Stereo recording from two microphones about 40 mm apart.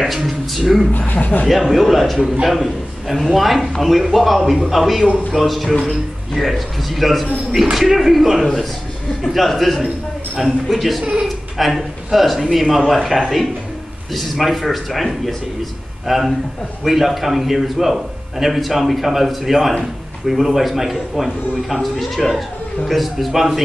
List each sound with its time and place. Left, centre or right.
0.0 s speech: centre
0.9 s speech: left
1.5 s a man's voice: centre